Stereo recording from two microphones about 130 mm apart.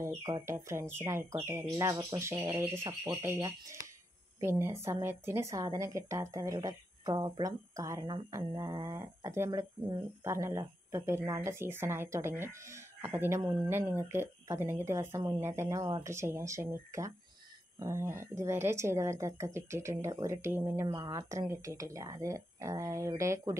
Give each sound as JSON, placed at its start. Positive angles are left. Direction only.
{"t": 0.3, "sound": "a woman's voice", "side_deg": -20}